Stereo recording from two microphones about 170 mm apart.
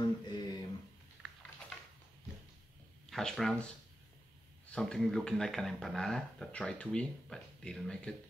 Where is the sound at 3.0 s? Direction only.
Centre (ahead or behind).